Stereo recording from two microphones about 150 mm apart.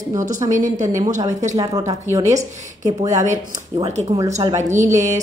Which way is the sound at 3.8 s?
45° right (ahead or behind).